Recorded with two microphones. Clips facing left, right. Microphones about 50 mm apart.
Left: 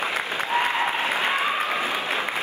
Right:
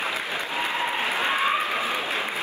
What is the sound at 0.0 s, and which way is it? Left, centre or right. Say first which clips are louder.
Applause: left 2 dB; left.